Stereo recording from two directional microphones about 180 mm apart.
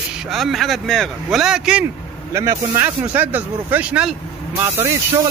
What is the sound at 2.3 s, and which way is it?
Speech, 15° right (ahead or behind).